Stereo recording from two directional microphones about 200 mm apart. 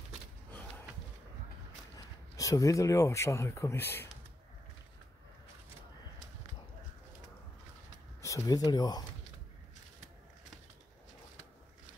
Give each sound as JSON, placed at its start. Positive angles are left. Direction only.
{"t": 2.3, "sound": "speech", "side_deg": 15}
{"t": 8.2, "sound": "speech", "side_deg": 15}